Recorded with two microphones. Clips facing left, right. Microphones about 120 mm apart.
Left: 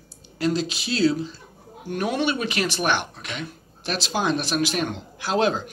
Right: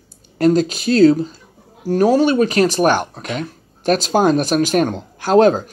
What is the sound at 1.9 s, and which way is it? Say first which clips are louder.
Speech: right 11 dB; 35° right (ahead or behind).